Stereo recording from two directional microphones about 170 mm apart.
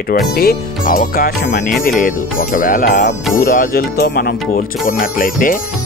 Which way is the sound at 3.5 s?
60° left (ahead or behind).